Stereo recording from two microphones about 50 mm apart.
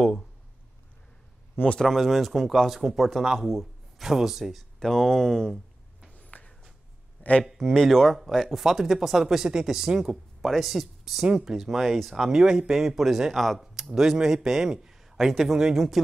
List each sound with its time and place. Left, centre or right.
1.8 s speech: centre
4.7 s speech: centre
6.1 s a sound: left
7.5 s speech: centre
12.3 s speech: centre